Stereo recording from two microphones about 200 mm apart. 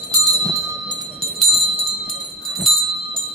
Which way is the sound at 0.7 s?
25° right (ahead or behind).